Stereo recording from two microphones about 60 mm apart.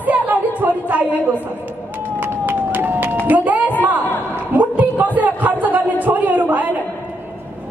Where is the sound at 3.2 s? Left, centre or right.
Right.